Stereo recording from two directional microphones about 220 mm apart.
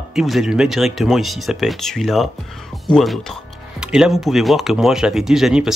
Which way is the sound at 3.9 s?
Centre (ahead or behind).